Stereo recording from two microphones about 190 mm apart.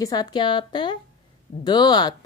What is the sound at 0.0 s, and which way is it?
Speech, 20° left (ahead or behind).